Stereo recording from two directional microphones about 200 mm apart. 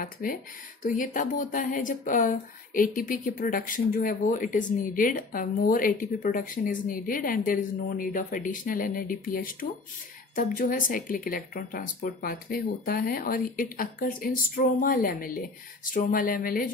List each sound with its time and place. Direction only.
0.0 s speech: 45° left (ahead or behind)